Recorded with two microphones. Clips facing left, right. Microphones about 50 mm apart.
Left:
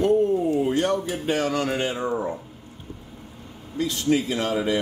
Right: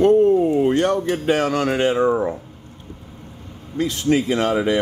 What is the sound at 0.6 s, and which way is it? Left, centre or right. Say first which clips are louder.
Speech: right 5 dB; right.